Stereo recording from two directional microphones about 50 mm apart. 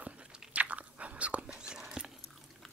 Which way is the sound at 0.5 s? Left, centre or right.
Right.